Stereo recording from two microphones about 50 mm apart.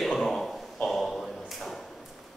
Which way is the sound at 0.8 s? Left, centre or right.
Centre.